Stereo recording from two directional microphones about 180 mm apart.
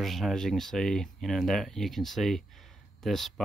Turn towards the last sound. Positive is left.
turn(degrees=0)  # may be behind; listen again after turning